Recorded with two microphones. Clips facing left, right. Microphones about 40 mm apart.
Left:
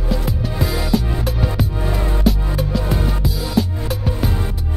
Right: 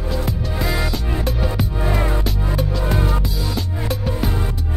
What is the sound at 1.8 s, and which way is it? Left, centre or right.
Music, centre.